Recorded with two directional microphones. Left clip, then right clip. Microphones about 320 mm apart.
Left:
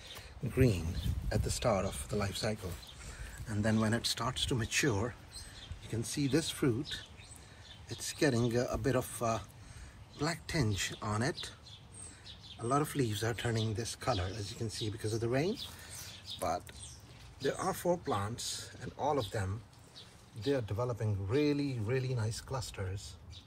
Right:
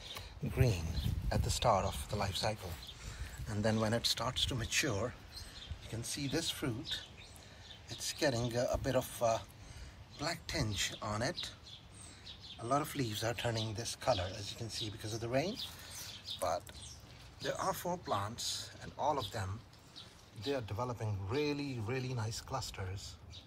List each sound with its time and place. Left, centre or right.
0.6 s a man's voice: centre
12.6 s a man's voice: centre
15.8 s a sound: centre
17.4 s a man's voice: centre